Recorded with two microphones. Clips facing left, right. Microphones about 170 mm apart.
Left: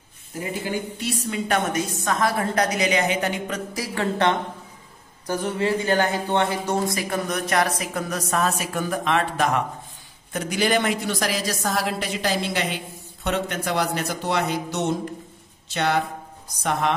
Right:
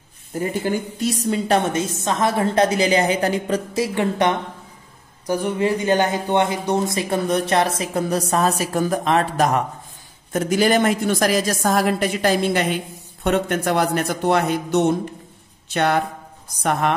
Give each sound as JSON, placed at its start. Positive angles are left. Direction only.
{"t": 0.4, "sound": "a woman's voice", "side_deg": -45}